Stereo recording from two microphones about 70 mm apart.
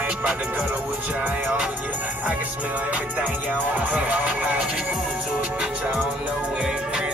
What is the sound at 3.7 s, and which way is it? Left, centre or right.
Music, right.